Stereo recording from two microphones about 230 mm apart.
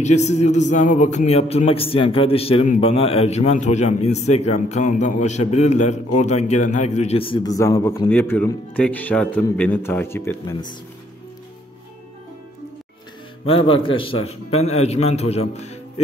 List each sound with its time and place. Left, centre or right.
0.0 s a man's voice: left
13.5 s a man's voice: left